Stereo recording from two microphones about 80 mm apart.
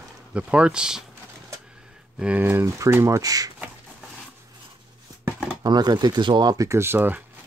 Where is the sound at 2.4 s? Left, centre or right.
Right.